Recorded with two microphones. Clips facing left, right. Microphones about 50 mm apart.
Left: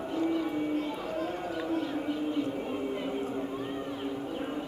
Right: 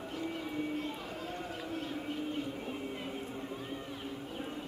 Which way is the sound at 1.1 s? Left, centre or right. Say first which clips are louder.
Left 8 dB; centre.